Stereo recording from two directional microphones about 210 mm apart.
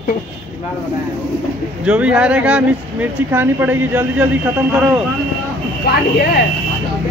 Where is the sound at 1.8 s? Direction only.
5° right (ahead or behind).